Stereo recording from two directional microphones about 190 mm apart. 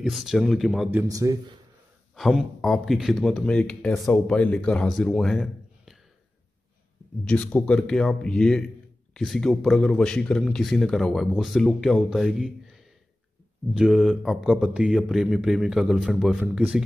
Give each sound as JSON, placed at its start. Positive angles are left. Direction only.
{"t": 0.0, "sound": "a man's voice", "side_deg": 0}
{"t": 1.0, "sound": "speech", "side_deg": -15}
{"t": 2.1, "sound": "a man's voice", "side_deg": 0}
{"t": 7.2, "sound": "a man's voice", "side_deg": 5}
{"t": 13.7, "sound": "a man's voice", "side_deg": 0}